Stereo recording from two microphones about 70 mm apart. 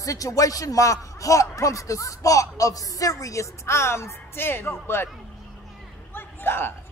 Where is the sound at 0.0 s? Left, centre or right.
Left.